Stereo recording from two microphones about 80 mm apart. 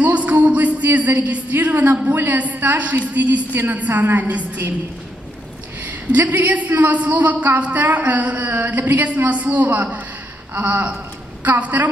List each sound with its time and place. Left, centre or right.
0.0 s a woman's voice: centre
5.9 s a woman's voice: right